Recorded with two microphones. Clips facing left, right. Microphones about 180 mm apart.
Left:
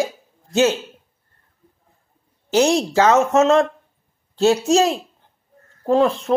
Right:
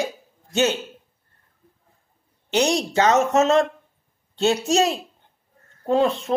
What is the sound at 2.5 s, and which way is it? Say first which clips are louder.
Speech: left 4 dB; 35° left (ahead or behind).